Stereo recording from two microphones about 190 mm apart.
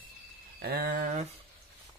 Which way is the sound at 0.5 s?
55° right (ahead or behind).